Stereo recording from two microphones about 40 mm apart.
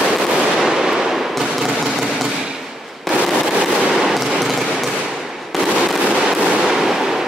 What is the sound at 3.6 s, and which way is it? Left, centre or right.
Fireworks, centre.